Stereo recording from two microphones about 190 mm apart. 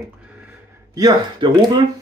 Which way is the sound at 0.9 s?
20° right (ahead or behind).